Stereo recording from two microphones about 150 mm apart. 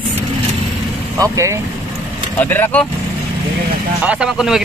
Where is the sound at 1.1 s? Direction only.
20° right (ahead or behind).